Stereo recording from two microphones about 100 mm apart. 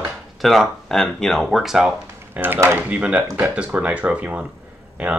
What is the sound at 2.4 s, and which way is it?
Speech, 15° right (ahead or behind).